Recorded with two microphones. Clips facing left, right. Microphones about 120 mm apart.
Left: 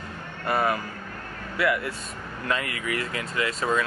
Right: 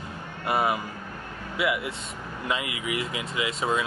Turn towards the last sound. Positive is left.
turn(degrees=-15)  # may be behind; listen again after turning